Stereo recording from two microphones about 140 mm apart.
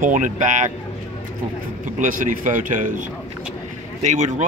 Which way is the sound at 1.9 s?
70° right (ahead or behind).